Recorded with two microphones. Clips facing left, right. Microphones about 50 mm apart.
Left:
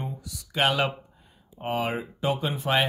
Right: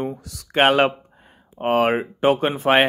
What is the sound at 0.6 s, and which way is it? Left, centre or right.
Speech, right.